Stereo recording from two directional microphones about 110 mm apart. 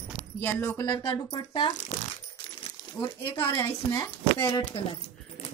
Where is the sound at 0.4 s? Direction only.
20° left (ahead or behind).